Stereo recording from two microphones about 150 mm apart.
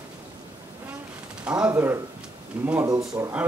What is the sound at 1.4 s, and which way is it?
Speech, 10° right (ahead or behind).